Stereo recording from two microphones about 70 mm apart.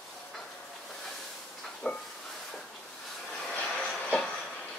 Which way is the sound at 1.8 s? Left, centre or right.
Centre.